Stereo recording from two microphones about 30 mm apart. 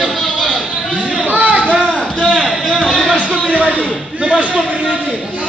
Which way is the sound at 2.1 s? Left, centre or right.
Left.